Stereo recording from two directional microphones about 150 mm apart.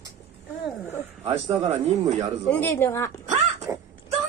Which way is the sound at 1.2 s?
30° right (ahead or behind).